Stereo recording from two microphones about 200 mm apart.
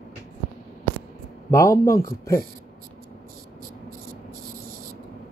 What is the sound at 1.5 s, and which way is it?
Speech, 15° left (ahead or behind).